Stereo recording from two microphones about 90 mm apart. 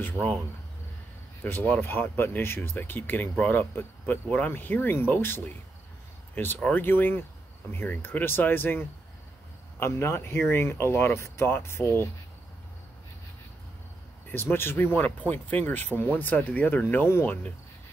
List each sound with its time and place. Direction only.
1.4 s speech: 20° left (ahead or behind)
14.3 s speech: 25° left (ahead or behind)